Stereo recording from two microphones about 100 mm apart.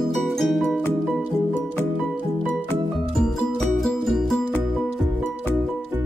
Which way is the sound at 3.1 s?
Centre (ahead or behind).